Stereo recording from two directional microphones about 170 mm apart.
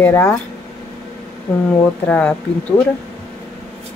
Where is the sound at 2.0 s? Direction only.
10° left (ahead or behind).